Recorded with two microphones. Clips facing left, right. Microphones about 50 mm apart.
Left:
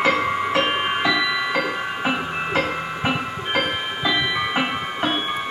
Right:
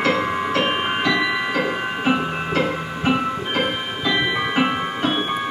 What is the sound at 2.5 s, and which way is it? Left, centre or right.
Music, centre.